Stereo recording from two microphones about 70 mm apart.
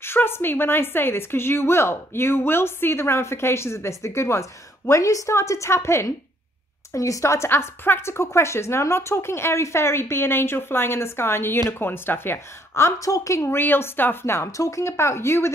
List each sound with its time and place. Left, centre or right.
0.0 s a woman's voice: left
6.9 s a woman's voice: left
13.6 s a woman's voice: left